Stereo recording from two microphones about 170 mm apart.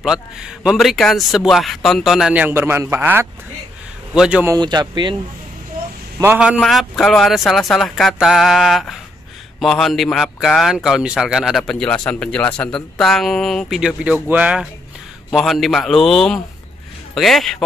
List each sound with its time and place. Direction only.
0.0 s speech: 5° right (ahead or behind)
4.5 s speech: 25° right (ahead or behind)
6.2 s speech: 10° right (ahead or behind)